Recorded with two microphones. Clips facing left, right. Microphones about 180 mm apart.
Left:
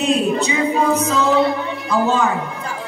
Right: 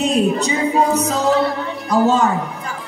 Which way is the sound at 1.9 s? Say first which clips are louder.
Right 3 dB; 40° right (ahead or behind).